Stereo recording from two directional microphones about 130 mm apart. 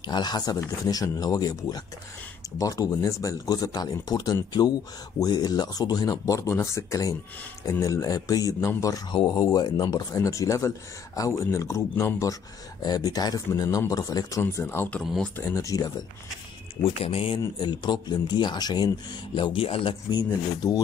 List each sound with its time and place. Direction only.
0.0 s speech: 35° left (ahead or behind)
14.4 s speech: 15° left (ahead or behind)
15.0 s speech: 5° left (ahead or behind)
15.3 s speech: 20° left (ahead or behind)
16.8 s speech: 45° left (ahead or behind)
17.6 s speech: 35° left (ahead or behind)